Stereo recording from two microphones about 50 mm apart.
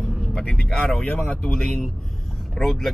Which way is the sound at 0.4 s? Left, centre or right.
Centre.